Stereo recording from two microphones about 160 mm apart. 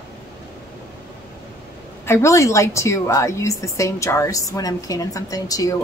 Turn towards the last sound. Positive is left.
turn(degrees=20)  # may be behind; listen again after turning